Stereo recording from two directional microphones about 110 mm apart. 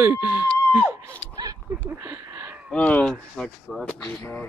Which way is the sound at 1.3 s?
35° right (ahead or behind).